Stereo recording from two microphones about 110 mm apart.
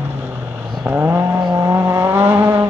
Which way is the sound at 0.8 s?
20° right (ahead or behind).